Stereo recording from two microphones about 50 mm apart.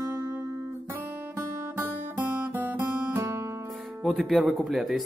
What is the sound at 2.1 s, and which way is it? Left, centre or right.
Guitar, right.